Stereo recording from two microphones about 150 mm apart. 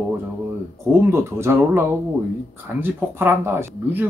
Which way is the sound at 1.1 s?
15° right (ahead or behind).